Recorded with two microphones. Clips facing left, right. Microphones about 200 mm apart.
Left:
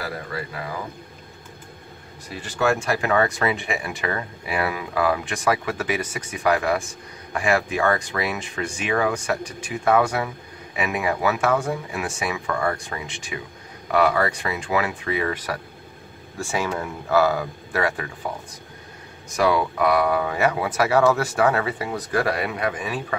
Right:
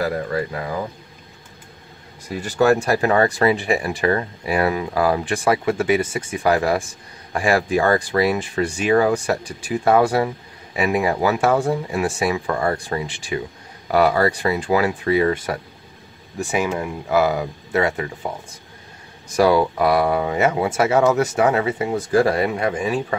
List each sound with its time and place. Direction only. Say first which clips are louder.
0.3 s speech: right 8 dB; 45° right (ahead or behind)
2.4 s speech: right 6 dB; 40° right (ahead or behind); by 18.1 s 25° right (ahead or behind)
19.3 s speech: right 5 dB; 35° right (ahead or behind)